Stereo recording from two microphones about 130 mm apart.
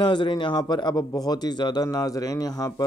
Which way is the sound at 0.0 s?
35° left (ahead or behind).